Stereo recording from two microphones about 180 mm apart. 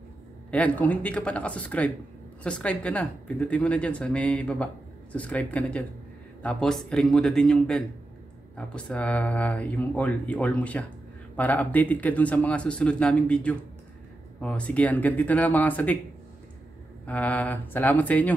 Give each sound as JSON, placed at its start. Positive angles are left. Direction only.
{"t": 0.5, "sound": "speech", "side_deg": 10}
{"t": 17.0, "sound": "speech", "side_deg": 10}